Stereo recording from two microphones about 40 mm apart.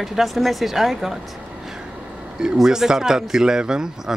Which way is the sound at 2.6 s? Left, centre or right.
Centre.